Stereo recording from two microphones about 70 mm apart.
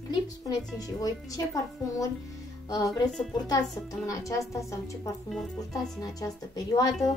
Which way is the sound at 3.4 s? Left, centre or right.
Left.